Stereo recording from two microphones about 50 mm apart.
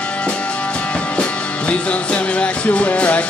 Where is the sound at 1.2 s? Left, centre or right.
Left.